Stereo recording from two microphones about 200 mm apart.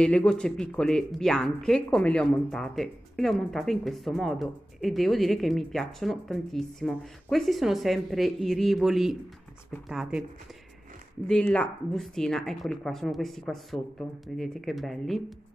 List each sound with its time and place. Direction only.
0.0 s speech: 5° left (ahead or behind)
11.2 s speech: 5° left (ahead or behind)